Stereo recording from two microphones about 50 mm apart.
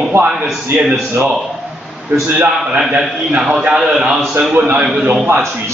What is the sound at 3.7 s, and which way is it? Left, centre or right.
Speech, centre.